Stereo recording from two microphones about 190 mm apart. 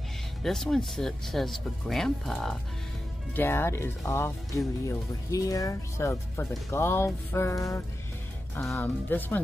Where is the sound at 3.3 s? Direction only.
10° left (ahead or behind).